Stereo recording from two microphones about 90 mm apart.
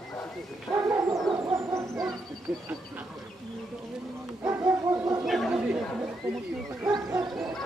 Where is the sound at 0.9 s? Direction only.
35° right (ahead or behind).